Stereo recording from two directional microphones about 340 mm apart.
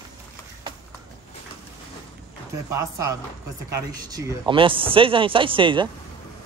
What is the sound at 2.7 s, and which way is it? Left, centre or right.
Speech, centre.